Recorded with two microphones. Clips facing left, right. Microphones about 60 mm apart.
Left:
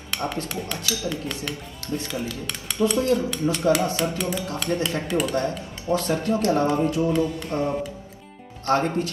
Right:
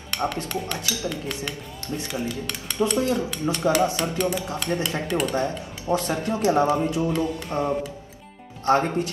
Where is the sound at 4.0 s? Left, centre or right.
Centre.